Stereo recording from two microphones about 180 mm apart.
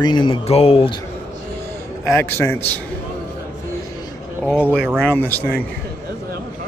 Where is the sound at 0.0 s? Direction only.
25° left (ahead or behind).